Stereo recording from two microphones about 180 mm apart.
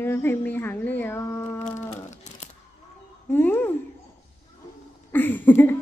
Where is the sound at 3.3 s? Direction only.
10° left (ahead or behind).